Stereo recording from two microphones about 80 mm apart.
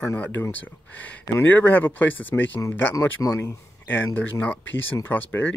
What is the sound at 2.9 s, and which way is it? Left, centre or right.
Speech, left.